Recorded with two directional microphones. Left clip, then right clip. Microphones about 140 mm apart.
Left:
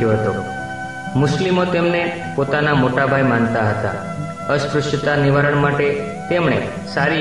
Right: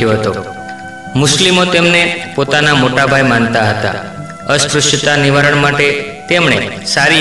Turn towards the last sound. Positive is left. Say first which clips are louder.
# right 8 dB
turn(degrees=-25)  # may be behind; listen again after turning